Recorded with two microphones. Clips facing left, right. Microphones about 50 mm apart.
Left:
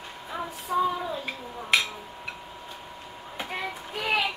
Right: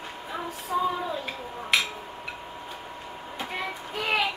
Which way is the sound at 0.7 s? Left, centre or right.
Centre.